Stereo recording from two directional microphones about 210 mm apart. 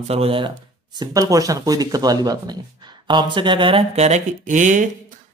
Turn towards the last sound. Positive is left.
turn(degrees=-35)  # may be behind; listen again after turning